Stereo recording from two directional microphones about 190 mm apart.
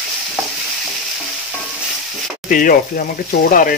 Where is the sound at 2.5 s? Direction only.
45° left (ahead or behind).